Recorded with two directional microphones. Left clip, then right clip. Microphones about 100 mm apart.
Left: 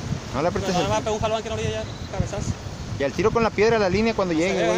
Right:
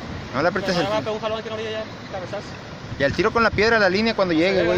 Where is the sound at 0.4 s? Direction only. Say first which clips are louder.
Right 2 dB; 30° left (ahead or behind).